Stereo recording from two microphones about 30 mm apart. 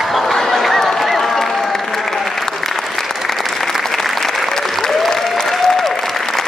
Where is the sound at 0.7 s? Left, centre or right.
Centre.